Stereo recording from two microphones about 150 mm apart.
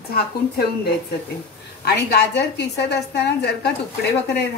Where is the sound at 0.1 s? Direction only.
90° left.